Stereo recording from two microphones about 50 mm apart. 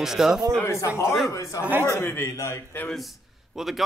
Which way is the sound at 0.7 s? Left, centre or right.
Left.